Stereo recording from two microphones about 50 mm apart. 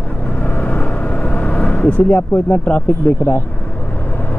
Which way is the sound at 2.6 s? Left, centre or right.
Left.